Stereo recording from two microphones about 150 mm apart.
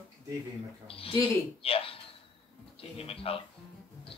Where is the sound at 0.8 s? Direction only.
40° left (ahead or behind).